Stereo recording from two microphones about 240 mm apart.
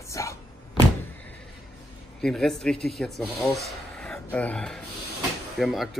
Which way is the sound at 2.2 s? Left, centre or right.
Centre.